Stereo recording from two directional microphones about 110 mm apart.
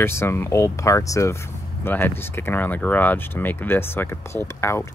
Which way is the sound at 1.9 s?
20° left (ahead or behind).